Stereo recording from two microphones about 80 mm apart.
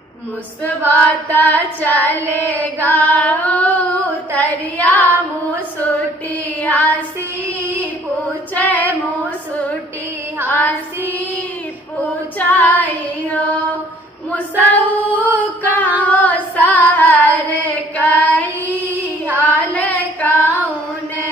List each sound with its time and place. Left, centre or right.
0.9 s female singing: left
6.6 s female singing: centre
7.4 s child singing: centre
8.5 s female singing: centre
12.4 s female singing: left
16.0 s singing: centre
18.7 s child singing: right
19.4 s female singing: centre